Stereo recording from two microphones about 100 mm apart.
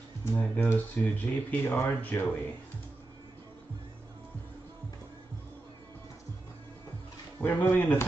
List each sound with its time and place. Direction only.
0.3 s speech: 15° left (ahead or behind)
7.3 s speech: 25° left (ahead or behind)